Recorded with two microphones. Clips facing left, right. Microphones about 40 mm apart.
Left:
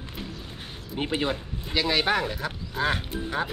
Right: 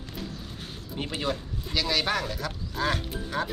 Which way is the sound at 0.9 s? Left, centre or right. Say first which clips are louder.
Left 3 dB; left.